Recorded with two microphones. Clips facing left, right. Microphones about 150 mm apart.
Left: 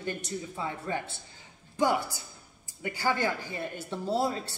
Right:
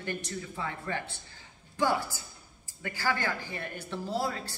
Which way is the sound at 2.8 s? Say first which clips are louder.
Left 3 dB; 20° left (ahead or behind).